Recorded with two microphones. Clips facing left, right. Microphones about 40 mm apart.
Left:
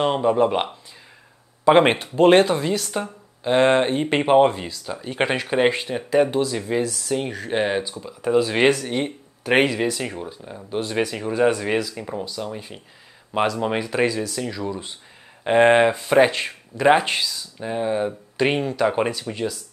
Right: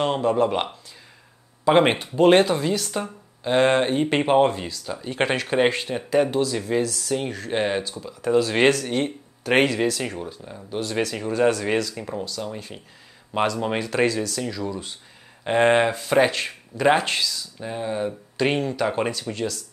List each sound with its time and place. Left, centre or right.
0.0 s speech: centre
2.3 s speech: left
2.9 s speech: centre
7.1 s speech: centre
7.8 s speech: centre
17.0 s speech: left